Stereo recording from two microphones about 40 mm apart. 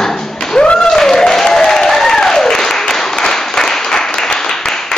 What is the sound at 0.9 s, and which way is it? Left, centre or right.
Applause, centre.